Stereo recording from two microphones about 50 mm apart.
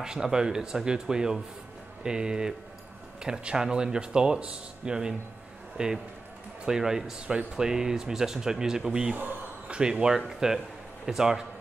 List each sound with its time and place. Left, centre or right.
0.0 s speech: centre
9.1 s a sound: right
10.2 s speech: centre